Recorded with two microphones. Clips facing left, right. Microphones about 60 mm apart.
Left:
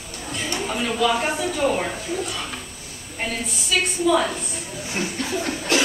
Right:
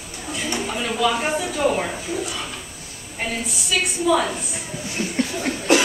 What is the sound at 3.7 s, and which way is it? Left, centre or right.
Speech, centre.